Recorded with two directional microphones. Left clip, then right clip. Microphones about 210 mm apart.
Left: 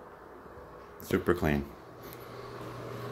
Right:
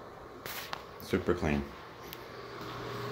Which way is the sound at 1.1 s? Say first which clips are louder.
Left 3 dB; 20° left (ahead or behind).